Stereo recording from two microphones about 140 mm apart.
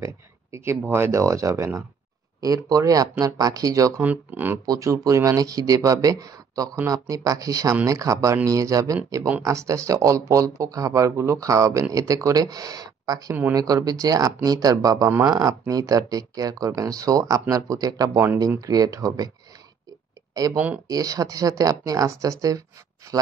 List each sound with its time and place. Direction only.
0.0 s speech: 20° right (ahead or behind)
4.0 s speech: 10° right (ahead or behind)
4.6 s speech: 20° right (ahead or behind)
18.7 s speech: 25° right (ahead or behind)
20.5 s speech: 10° right (ahead or behind)
20.9 s speech: 25° right (ahead or behind)